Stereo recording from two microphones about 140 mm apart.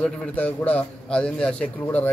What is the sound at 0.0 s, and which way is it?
A man's voice, 10° left (ahead or behind).